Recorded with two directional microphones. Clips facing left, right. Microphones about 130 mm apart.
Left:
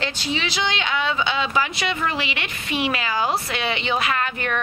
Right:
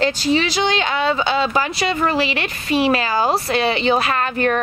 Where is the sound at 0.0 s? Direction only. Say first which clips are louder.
Right 9 dB; 40° right (ahead or behind).